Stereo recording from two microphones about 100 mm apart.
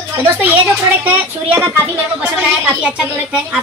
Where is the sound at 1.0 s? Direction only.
15° right (ahead or behind).